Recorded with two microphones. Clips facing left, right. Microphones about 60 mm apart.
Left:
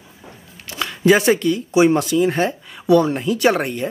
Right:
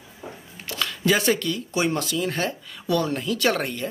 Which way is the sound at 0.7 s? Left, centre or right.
Centre.